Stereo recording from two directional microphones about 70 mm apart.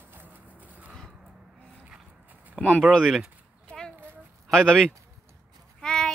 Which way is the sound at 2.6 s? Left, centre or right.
Centre.